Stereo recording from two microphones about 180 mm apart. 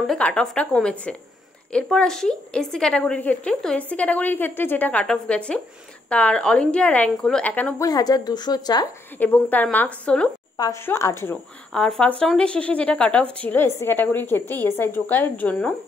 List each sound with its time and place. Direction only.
0.0 s a woman's voice: 5° left (ahead or behind)
7.8 s a woman's voice: 20° left (ahead or behind)
9.2 s speech: 10° left (ahead or behind)
10.6 s speech: 15° left (ahead or behind)
11.7 s speech: 5° left (ahead or behind)